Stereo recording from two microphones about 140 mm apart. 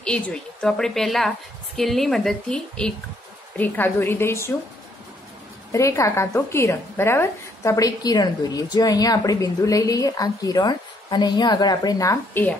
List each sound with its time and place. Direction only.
0.0 s a woman's voice: 5° left (ahead or behind)
5.7 s a woman's voice: 20° left (ahead or behind)